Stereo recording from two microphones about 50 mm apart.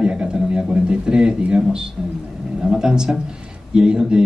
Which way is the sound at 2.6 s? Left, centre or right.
Centre.